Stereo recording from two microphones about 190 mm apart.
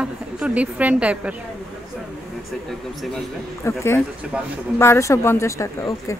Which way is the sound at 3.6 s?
15° left (ahead or behind).